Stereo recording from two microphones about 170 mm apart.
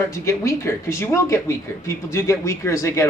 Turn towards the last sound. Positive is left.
turn(degrees=15)  # may be behind; listen again after turning